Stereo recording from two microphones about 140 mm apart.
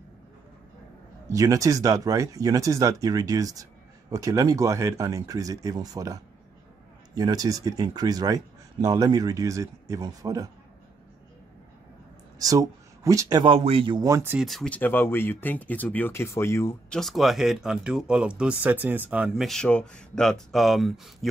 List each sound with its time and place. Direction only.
1.3 s speech: 25° right (ahead or behind)
12.4 s speech: 25° right (ahead or behind)
13.6 s a man's voice: 40° right (ahead or behind)
14.0 s speech: 20° right (ahead or behind)
14.4 s speech: centre (ahead or behind); by 16.7 s 20° left (ahead or behind)
16.9 s speech: centre (ahead or behind)